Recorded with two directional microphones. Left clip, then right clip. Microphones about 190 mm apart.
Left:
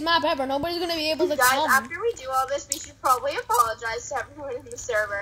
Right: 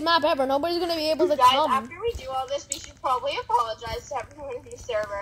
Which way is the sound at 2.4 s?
60° left (ahead or behind).